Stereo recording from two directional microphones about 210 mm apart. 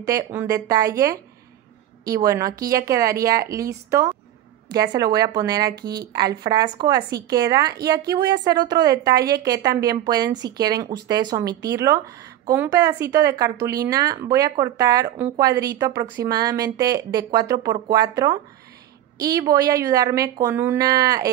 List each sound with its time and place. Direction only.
0.0 s a woman's voice: 15° right (ahead or behind)